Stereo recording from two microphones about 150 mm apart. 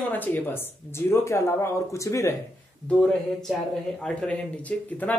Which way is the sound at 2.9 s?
5° left (ahead or behind).